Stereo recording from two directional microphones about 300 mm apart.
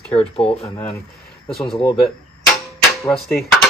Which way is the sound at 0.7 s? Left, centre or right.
Centre.